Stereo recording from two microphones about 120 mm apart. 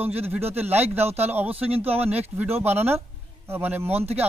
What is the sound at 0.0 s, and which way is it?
A man's voice, 15° right (ahead or behind).